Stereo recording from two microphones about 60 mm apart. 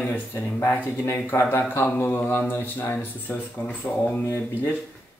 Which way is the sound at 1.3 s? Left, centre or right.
Left.